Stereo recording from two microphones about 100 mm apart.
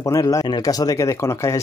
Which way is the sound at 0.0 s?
35° left (ahead or behind).